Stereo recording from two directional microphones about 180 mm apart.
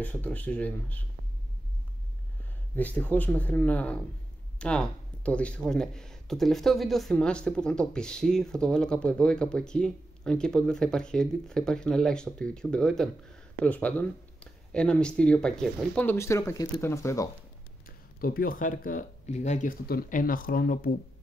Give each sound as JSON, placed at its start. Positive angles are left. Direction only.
{"t": 0.0, "sound": "speech", "side_deg": 10}
{"t": 2.7, "sound": "speech", "side_deg": 10}
{"t": 17.8, "sound": "speech", "side_deg": 55}